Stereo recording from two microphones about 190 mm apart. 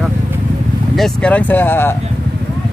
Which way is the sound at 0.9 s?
5° left (ahead or behind).